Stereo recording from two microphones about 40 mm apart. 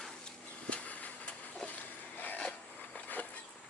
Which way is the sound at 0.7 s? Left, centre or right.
Left.